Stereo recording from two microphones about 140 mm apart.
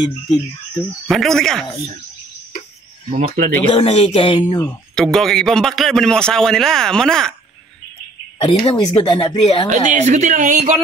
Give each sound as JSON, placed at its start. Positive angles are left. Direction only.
{"t": 1.0, "sound": "a man's voice", "side_deg": 0}
{"t": 3.1, "sound": "speech", "side_deg": -65}
{"t": 3.7, "sound": "speech", "side_deg": 45}
{"t": 4.9, "sound": "a man's voice", "side_deg": 5}
{"t": 8.4, "sound": "speech", "side_deg": 45}
{"t": 9.7, "sound": "speech", "side_deg": -55}